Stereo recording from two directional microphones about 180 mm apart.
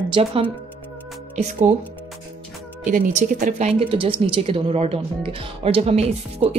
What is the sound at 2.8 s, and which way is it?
Speech, 50° right (ahead or behind).